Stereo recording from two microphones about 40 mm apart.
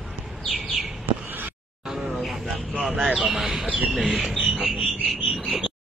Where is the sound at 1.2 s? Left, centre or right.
Right.